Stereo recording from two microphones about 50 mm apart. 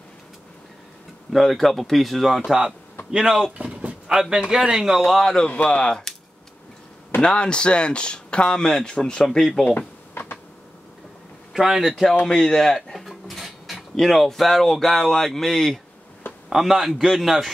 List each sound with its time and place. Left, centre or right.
1.3 s speech: centre
3.1 s a man's voice: centre
3.5 s vehicle: right
4.1 s a man's voice: centre
5.2 s speech: centre
7.2 s speech: centre
10.2 s a sound: left
11.5 s speech: centre
11.9 s speech: centre
16.4 s speech: centre